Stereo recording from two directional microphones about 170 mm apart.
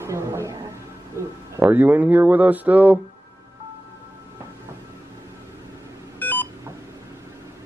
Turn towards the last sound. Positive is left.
turn(degrees=10)  # may be behind; listen again after turning